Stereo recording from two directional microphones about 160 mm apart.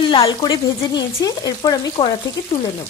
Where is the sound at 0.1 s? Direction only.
30° left (ahead or behind).